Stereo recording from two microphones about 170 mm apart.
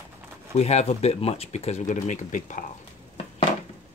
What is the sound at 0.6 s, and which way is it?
Speech, 40° left (ahead or behind).